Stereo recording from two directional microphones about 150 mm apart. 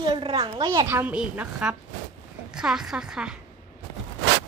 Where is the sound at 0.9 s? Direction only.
10° right (ahead or behind).